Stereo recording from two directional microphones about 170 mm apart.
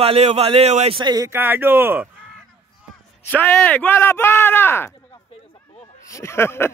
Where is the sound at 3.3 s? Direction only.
10° left (ahead or behind).